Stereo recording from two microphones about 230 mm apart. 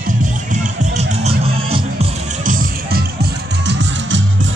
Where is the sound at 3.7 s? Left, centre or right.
Right.